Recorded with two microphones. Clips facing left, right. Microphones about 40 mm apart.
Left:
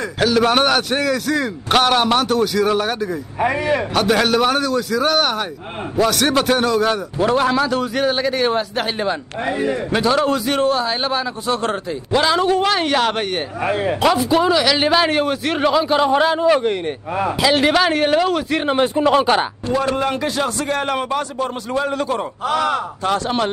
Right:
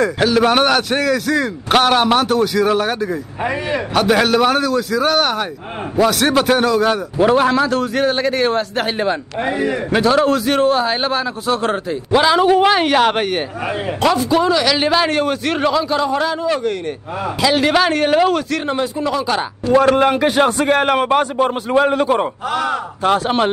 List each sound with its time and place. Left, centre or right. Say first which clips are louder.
0.2 s a man's voice: left 1 dB; centre
8.5 s a man's voice: right 1 dB; centre
8.8 s a man's voice: right 3 dB; centre
13.8 s a man's voice: right 1 dB; centre
15.8 s a man's voice: left 2 dB; left
17.4 s a man's voice: right 2 dB; centre
18.8 s speech: left 4 dB; left
19.8 s a man's voice: right 6 dB; right
22.5 s speech: left 3 dB; left
23.0 s a man's voice: right 5 dB; centre